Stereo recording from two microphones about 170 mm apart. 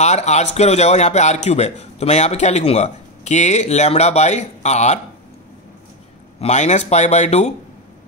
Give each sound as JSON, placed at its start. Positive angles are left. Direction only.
{"t": 0.0, "sound": "a man's voice", "side_deg": 40}
{"t": 6.4, "sound": "a man's voice", "side_deg": 40}